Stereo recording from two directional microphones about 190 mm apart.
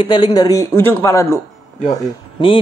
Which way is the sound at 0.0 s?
20° left (ahead or behind).